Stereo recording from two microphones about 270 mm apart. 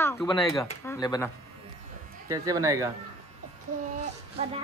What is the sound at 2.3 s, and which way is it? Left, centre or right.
Speech, centre.